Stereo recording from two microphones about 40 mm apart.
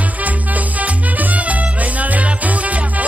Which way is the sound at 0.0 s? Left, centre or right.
Right.